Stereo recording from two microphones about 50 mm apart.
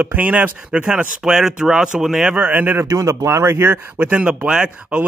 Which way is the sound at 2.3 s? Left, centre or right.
Right.